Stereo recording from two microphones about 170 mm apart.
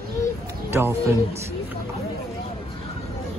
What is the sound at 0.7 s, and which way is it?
Speech, 15° right (ahead or behind).